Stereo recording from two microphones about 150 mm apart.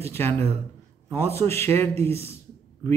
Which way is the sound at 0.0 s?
15° left (ahead or behind).